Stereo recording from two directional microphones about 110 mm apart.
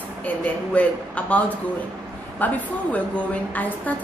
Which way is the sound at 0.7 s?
10° left (ahead or behind).